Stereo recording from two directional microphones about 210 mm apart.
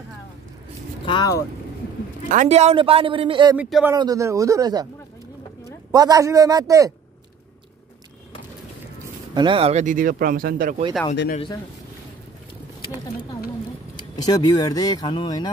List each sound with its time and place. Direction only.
1.0 s speech: 20° left (ahead or behind)
2.2 s speech: 35° right (ahead or behind)
3.5 s a man's voice: 5° right (ahead or behind)
3.9 s a man's voice: 20° right (ahead or behind)
5.9 s a man's voice: 15° right (ahead or behind)
9.3 s speech: 20° right (ahead or behind); by 10.8 s 40° right (ahead or behind)
14.1 s speech: 20° left (ahead or behind)